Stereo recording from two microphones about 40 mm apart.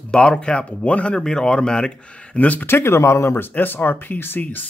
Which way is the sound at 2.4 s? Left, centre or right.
Left.